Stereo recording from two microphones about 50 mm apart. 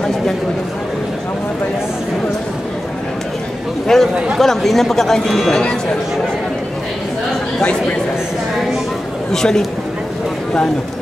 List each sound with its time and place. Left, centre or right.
3.8 s a man's voice: centre
9.3 s a man's voice: centre